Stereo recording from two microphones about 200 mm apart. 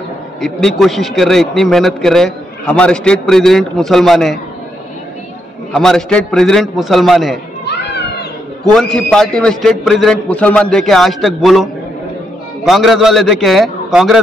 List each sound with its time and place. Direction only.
0.4 s a man's voice: centre (ahead or behind)
5.8 s a man's voice: 5° left (ahead or behind)
7.6 s children playing: 55° left (ahead or behind)
8.7 s a man's voice: 5° left (ahead or behind)